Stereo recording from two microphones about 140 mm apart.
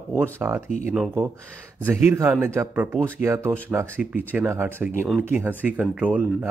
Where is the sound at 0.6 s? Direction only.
55° left (ahead or behind).